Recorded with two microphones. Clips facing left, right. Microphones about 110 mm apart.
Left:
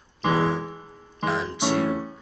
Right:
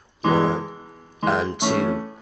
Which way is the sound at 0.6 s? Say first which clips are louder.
Right 1 dB; 15° right (ahead or behind).